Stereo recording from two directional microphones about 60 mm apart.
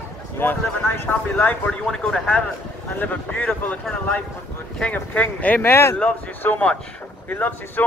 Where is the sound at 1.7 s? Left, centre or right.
Centre.